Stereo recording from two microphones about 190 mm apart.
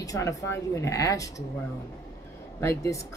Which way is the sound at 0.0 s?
15° left (ahead or behind).